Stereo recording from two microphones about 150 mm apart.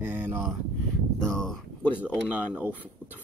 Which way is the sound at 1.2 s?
5° left (ahead or behind).